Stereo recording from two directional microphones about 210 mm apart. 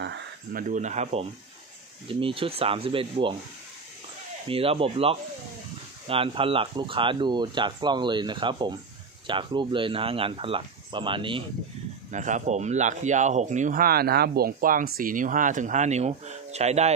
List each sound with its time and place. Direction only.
0.0 s speech: 50° right (ahead or behind); by 3.3 s 25° right (ahead or behind)
4.5 s speech: 25° right (ahead or behind)
12.1 s speech: 35° right (ahead or behind)